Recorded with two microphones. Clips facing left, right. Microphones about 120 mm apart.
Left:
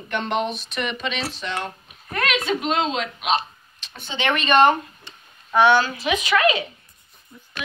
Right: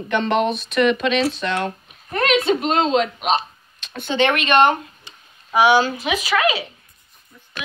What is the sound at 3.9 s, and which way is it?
Speech, 60° right (ahead or behind).